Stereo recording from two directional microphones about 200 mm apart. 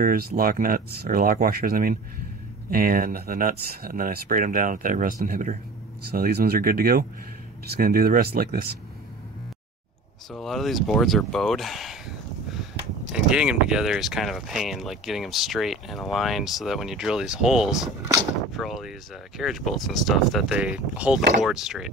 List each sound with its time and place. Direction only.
0.0 s speech: 45° right (ahead or behind)
10.3 s speech: centre (ahead or behind)
13.1 s speech: 5° right (ahead or behind)